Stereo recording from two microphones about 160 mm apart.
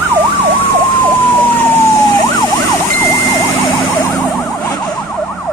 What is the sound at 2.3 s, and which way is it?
Emergency vehicle, 20° left (ahead or behind).